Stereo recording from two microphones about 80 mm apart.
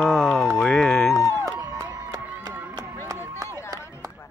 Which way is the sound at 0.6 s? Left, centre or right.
Centre.